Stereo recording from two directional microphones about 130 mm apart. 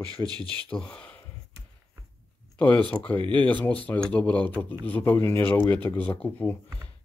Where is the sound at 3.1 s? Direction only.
40° right (ahead or behind).